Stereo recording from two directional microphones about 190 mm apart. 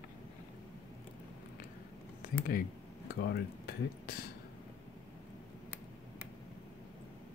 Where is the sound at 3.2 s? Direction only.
55° left (ahead or behind).